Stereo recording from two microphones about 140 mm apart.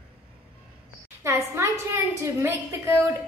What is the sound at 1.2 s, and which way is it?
A woman's voice, 20° right (ahead or behind).